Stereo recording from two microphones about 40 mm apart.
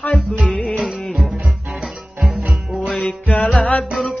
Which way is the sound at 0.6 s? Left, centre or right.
Centre.